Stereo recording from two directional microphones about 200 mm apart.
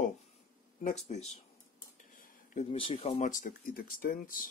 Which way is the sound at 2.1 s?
40° left (ahead or behind).